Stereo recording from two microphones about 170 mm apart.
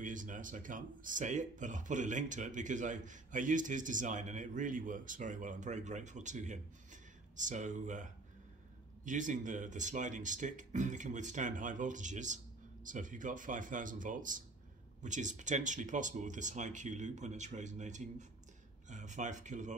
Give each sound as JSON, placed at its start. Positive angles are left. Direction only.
{"t": 0.0, "sound": "speech", "side_deg": -50}